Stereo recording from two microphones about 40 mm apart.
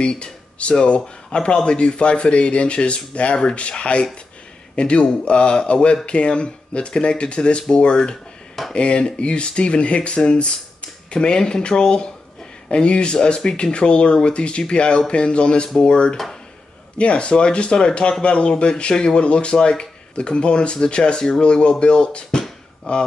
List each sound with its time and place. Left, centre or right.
0.0 s speech: left